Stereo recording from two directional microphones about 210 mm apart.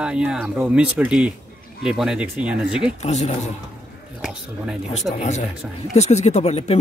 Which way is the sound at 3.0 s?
35° left (ahead or behind).